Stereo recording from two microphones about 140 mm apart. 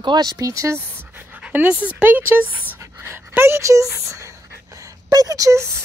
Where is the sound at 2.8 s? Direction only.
15° right (ahead or behind).